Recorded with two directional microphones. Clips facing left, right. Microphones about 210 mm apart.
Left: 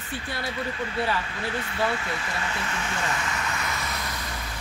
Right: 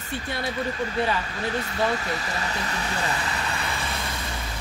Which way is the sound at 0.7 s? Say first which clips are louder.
Right 2 dB; 40° right (ahead or behind).